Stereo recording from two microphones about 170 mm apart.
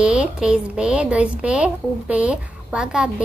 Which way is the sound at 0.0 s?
5° right (ahead or behind).